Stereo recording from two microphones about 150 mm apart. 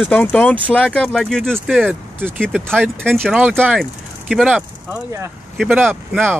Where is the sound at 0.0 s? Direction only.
10° left (ahead or behind).